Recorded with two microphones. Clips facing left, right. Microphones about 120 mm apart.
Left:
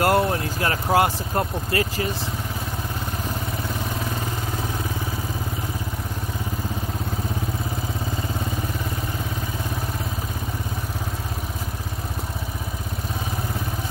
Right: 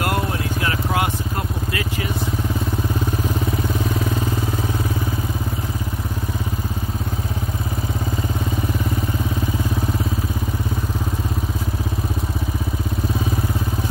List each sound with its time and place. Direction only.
0.0 s vehicle: 35° left (ahead or behind)
1.7 s speech: 35° left (ahead or behind)